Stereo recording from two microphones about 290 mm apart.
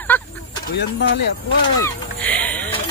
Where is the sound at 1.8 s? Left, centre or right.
Centre.